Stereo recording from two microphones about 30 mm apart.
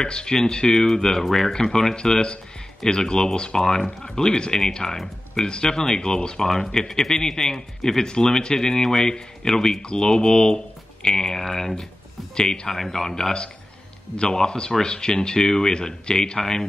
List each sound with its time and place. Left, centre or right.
0.0 s speech: left; by 1.5 s centre
1.5 s speech: left
6.4 s speech: centre
12.4 s speech: left
12.6 s speech: centre